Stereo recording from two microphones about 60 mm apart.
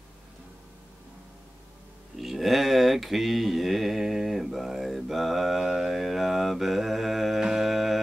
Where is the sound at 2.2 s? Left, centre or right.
Centre.